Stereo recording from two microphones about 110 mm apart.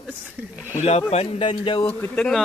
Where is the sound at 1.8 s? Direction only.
15° left (ahead or behind).